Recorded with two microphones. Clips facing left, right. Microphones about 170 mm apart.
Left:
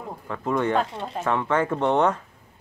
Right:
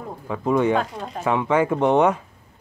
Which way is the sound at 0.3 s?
10° right (ahead or behind).